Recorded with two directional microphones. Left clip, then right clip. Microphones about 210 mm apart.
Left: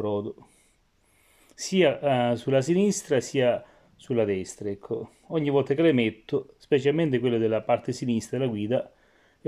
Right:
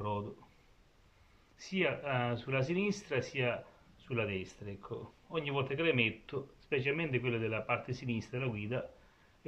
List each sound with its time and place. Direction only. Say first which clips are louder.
1.6 s speech: left 12 dB; 40° left (ahead or behind)